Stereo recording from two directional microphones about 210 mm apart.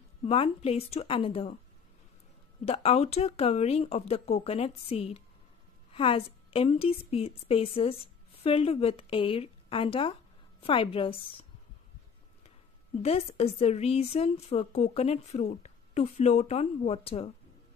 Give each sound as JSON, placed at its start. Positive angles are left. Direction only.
{"t": 0.2, "sound": "a woman's voice", "side_deg": 25}
{"t": 2.6, "sound": "a woman's voice", "side_deg": 30}
{"t": 13.0, "sound": "a woman's voice", "side_deg": 30}